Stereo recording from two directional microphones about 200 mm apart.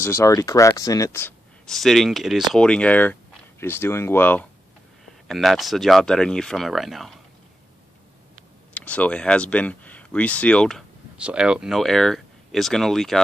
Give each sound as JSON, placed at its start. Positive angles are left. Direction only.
{"t": 0.0, "sound": "speech", "side_deg": 15}
{"t": 1.7, "sound": "speech", "side_deg": 0}
{"t": 8.7, "sound": "speech", "side_deg": 5}